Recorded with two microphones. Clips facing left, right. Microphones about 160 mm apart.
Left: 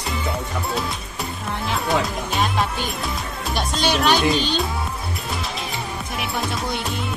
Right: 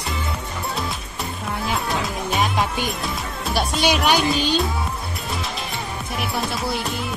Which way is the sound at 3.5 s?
10° right (ahead or behind).